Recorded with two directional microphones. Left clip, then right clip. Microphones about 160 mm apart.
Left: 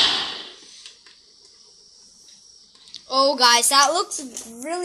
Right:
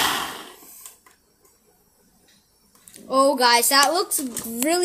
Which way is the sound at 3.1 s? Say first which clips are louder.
Even; 10° right (ahead or behind).